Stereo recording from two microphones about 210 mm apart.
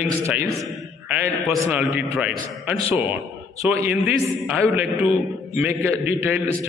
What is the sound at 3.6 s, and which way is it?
A man's voice, 5° right (ahead or behind).